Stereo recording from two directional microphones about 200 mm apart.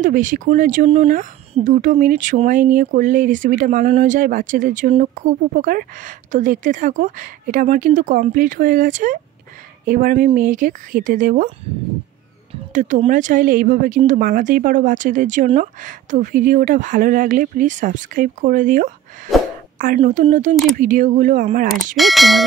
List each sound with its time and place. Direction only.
0.0 s speech: 40° right (ahead or behind)
12.7 s speech: 40° right (ahead or behind)
20.0 s speech: 35° right (ahead or behind)
21.9 s a sound: centre (ahead or behind)